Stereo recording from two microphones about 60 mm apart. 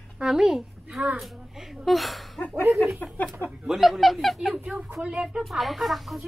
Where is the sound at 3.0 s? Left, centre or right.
Left.